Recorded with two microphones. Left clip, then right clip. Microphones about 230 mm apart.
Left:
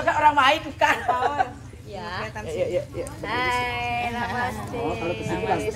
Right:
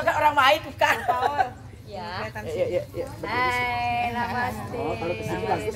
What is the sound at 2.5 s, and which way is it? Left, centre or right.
Speech, right.